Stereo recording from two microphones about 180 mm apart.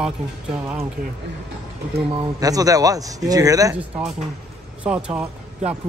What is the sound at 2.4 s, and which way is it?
Speech, 20° right (ahead or behind).